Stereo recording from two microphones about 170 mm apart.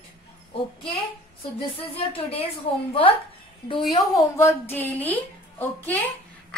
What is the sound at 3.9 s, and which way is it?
A woman's voice, 20° left (ahead or behind).